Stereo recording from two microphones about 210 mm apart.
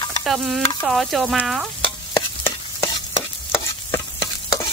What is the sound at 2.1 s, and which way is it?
Stir, 20° left (ahead or behind).